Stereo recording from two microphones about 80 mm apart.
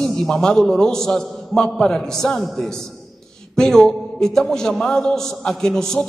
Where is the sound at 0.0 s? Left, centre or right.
Centre.